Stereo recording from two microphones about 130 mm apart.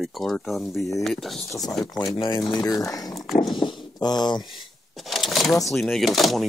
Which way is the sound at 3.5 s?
40° left (ahead or behind).